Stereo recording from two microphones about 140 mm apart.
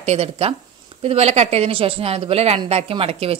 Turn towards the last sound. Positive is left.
turn(degrees=-45)  # may be behind; listen again after turning